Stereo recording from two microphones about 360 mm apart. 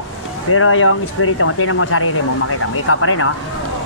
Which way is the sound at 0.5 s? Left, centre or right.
Left.